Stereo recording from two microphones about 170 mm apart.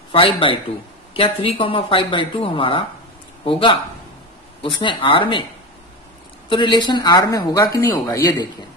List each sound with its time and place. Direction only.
0.1 s speech: 30° left (ahead or behind)
6.5 s speech: 25° left (ahead or behind)